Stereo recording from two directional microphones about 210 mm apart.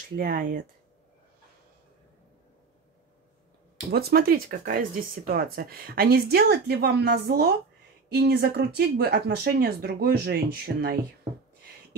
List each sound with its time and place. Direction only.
0.1 s speech: 40° right (ahead or behind)
3.9 s speech: 50° right (ahead or behind)